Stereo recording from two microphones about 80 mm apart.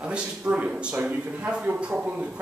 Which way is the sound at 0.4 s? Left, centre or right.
Right.